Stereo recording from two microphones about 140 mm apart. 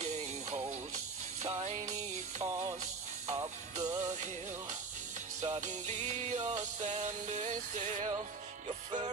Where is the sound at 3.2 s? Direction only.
55° right (ahead or behind).